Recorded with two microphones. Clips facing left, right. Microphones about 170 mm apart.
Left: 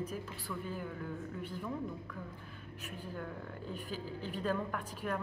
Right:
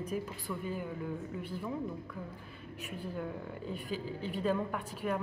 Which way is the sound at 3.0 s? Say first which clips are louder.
Right 4 dB; 10° right (ahead or behind).